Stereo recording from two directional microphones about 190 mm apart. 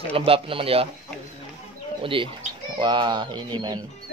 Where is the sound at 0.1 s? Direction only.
30° right (ahead or behind).